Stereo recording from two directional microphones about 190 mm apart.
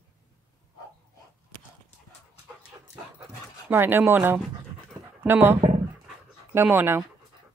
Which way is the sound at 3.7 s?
10° right (ahead or behind).